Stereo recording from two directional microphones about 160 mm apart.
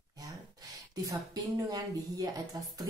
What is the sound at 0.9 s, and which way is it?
A woman's voice, 25° right (ahead or behind).